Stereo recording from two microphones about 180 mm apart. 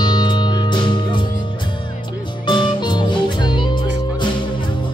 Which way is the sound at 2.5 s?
25° left (ahead or behind).